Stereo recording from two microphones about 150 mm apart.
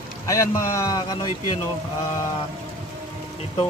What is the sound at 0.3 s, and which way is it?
A man's voice, 20° left (ahead or behind).